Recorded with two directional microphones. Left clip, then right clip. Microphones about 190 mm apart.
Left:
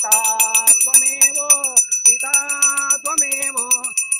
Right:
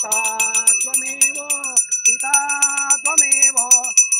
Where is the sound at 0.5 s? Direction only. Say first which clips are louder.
Left 3 dB; 50° right (ahead or behind).